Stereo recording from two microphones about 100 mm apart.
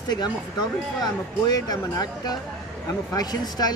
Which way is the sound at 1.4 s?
40° left (ahead or behind).